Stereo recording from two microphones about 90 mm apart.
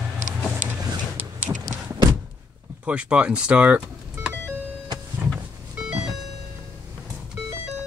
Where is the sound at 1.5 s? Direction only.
30° right (ahead or behind).